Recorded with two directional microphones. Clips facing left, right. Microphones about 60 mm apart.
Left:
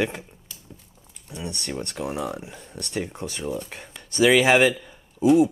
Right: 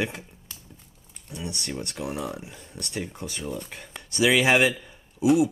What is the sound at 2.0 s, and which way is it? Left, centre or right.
Speech, centre.